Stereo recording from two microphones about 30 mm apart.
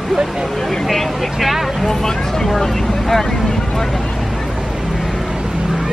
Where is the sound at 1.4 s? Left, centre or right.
Centre.